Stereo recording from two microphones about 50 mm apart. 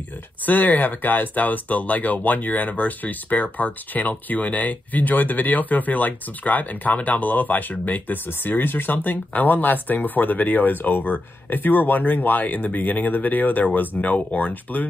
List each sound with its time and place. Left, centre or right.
0.5 s speech: left